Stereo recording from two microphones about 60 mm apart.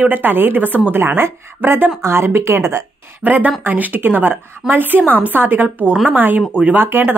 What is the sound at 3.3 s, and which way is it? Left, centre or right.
A woman's voice, right.